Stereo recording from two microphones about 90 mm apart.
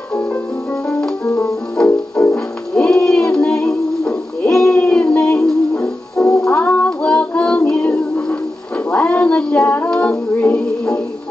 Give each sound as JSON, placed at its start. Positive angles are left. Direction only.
{"t": 0.1, "sound": "music", "side_deg": 20}
{"t": 1.8, "sound": "music", "side_deg": 10}